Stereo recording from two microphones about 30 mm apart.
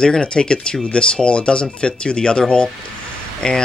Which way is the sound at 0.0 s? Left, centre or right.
Left.